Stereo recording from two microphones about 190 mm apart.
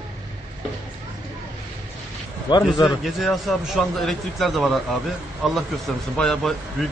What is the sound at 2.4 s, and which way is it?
Speech, 20° left (ahead or behind).